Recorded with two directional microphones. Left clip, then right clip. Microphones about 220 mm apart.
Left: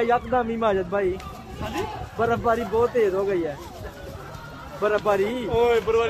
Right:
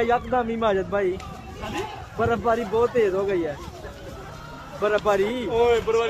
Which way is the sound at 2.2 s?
Centre (ahead or behind).